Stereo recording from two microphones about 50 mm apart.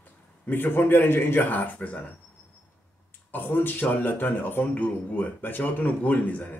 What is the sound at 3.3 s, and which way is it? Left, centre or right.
A man's voice, left.